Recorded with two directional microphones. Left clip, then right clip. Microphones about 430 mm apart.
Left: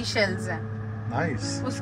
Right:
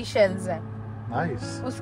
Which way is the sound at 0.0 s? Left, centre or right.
Right.